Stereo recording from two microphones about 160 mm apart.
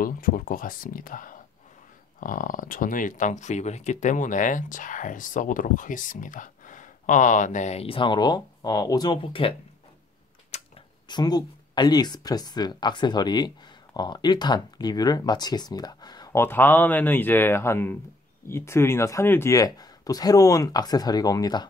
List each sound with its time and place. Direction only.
0.0 s speech: 60° left (ahead or behind); by 9.6 s 35° left (ahead or behind)
10.5 s a sound: 45° left (ahead or behind)
11.1 s speech: 25° left (ahead or behind)